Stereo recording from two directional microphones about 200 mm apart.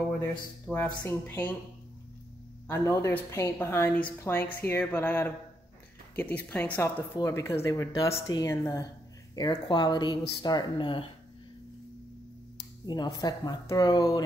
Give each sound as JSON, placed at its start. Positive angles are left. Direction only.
{"t": 0.7, "sound": "speech", "side_deg": 10}
{"t": 2.7, "sound": "speech", "side_deg": 15}
{"t": 12.5, "sound": "speech", "side_deg": 20}